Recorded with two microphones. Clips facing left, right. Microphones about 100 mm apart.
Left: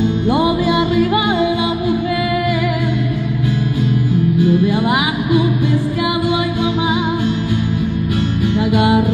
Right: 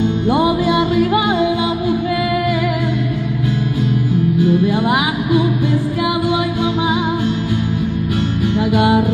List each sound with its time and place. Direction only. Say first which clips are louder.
0.3 s music: right 1 dB; 40° right (ahead or behind)
4.6 s music: even; 35° right (ahead or behind)
8.5 s music: even; 35° right (ahead or behind)